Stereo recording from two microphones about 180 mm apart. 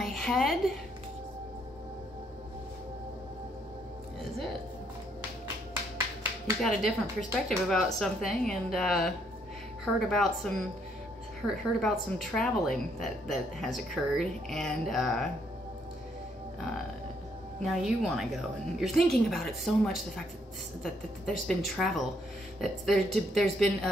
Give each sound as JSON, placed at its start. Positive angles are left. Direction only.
{"t": 0.0, "sound": "a sound", "side_deg": 0}
{"t": 6.6, "sound": "a woman's voice", "side_deg": 0}
{"t": 17.6, "sound": "a woman's voice", "side_deg": 0}